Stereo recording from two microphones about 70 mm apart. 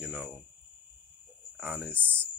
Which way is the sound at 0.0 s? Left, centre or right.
Right.